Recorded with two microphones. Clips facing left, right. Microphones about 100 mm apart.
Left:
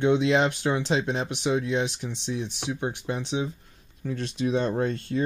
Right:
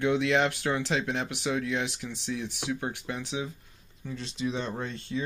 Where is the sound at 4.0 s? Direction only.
55° left (ahead or behind).